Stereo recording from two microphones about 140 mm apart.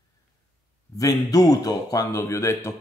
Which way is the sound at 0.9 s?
25° left (ahead or behind).